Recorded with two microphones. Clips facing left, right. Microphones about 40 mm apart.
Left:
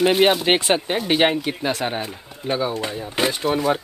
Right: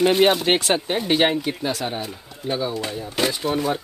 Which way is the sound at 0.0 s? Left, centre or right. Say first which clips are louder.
Even; centre.